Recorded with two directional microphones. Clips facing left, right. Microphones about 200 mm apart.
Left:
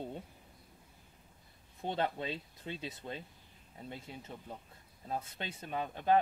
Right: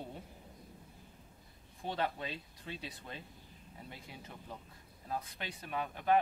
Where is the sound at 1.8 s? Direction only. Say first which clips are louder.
Left 2 dB; 25° left (ahead or behind).